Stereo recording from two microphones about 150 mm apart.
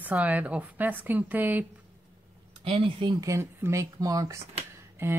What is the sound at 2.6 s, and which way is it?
Speech, 35° right (ahead or behind).